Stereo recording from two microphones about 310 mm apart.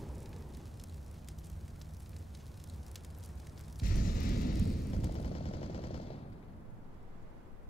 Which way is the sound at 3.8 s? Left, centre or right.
Left.